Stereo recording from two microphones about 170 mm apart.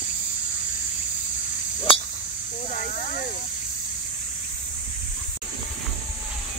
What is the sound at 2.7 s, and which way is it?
Snake, 50° left (ahead or behind).